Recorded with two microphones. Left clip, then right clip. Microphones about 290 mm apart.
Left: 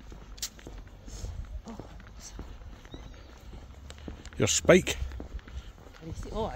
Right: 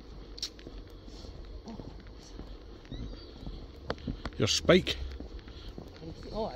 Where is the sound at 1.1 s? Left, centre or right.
Left.